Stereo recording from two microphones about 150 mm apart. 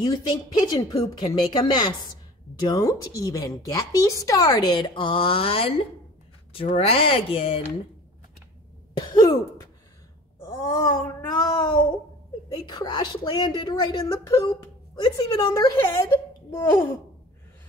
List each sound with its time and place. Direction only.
0.0 s a woman's voice: 25° left (ahead or behind)
8.9 s a woman's voice: 25° left (ahead or behind)
10.4 s a sound: 25° left (ahead or behind)
12.5 s a woman's voice: 30° left (ahead or behind); by 16.8 s 15° left (ahead or behind)